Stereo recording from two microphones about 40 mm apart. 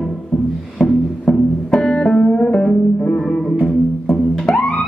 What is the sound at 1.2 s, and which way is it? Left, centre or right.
Music, centre.